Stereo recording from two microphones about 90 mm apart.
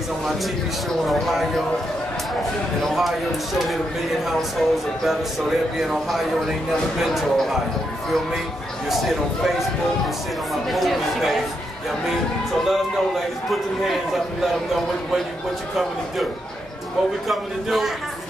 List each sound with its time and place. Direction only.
1.0 s a man's voice: centre (ahead or behind)
2.8 s a man's voice: centre (ahead or behind)
8.8 s a man's voice: centre (ahead or behind)
12.6 s a man's voice: centre (ahead or behind)
17.3 s a man's voice: centre (ahead or behind)